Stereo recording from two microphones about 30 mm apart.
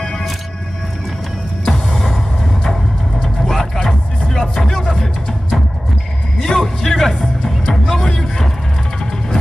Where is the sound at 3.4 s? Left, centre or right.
Centre.